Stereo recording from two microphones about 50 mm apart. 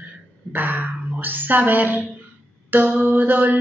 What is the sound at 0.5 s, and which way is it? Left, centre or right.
Throat clearing, right.